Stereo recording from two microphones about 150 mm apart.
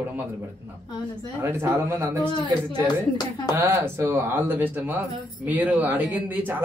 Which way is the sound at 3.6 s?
20° right (ahead or behind).